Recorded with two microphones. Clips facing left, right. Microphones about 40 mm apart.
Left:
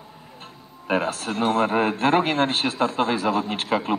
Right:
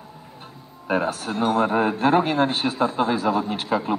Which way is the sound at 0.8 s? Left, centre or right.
Left.